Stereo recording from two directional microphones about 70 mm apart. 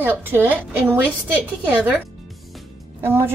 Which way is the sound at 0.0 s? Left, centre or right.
Right.